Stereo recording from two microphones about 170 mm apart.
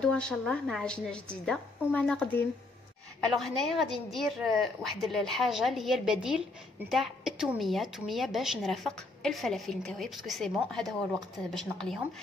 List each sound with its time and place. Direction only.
0.0 s a woman's voice: 5° left (ahead or behind)